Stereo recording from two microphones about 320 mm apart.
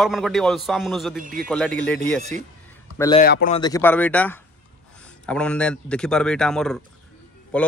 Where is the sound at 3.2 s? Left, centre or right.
Left.